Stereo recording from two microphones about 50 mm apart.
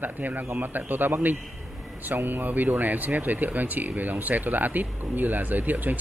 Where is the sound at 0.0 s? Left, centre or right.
Right.